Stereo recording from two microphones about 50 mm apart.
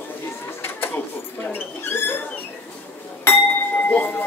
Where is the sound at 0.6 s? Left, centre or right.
Left.